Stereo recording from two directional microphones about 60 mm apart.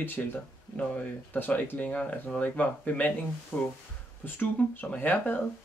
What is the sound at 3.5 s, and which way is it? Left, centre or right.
Speech, centre.